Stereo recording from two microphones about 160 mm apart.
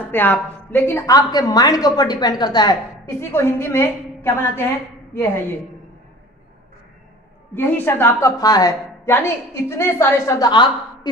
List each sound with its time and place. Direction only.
0.1 s a woman's voice: 10° left (ahead or behind)
7.5 s a woman's voice: 15° left (ahead or behind)